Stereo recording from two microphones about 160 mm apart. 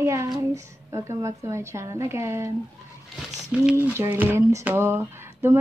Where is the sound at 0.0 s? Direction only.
20° right (ahead or behind).